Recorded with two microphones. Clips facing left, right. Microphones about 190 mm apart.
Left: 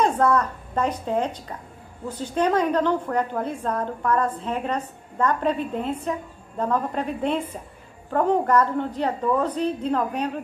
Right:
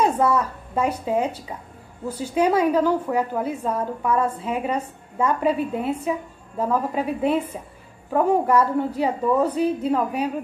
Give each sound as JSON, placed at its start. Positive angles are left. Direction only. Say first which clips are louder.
{"t": 0.0, "sound": "a woman's voice", "louder": "even", "side_deg": -10}